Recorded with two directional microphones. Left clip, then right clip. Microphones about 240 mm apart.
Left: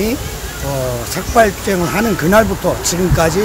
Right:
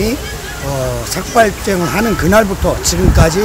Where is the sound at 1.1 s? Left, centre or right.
Centre.